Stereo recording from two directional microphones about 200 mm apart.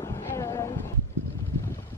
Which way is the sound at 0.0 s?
15° left (ahead or behind).